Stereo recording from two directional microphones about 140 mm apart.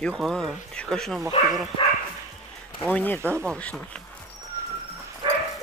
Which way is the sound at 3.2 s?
15° right (ahead or behind).